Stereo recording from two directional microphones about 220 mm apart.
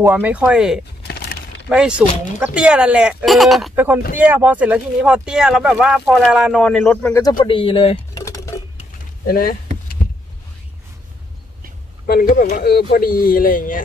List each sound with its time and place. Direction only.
0.0 s speech: 10° right (ahead or behind)
1.0 s a sound: 45° left (ahead or behind)
1.7 s speech: 5° right (ahead or behind); by 8.4 s 15° left (ahead or behind)
9.2 s speech: 40° left (ahead or behind)
12.1 s speech: 40° left (ahead or behind)